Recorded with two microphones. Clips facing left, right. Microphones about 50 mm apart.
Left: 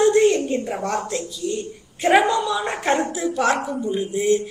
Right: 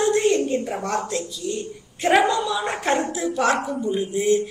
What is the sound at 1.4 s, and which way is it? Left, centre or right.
A woman's voice, centre.